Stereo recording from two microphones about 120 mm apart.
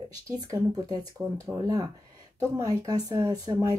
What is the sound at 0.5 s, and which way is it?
Speech, 30° right (ahead or behind).